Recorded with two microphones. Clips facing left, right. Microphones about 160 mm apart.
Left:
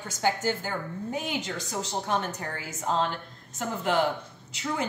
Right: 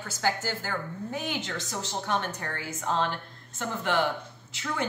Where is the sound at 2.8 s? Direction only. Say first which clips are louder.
Left 1 dB; 30° left (ahead or behind).